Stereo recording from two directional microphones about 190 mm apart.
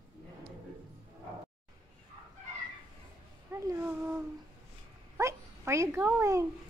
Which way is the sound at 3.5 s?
10° right (ahead or behind).